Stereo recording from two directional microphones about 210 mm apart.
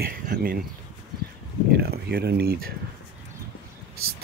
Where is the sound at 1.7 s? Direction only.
50° right (ahead or behind).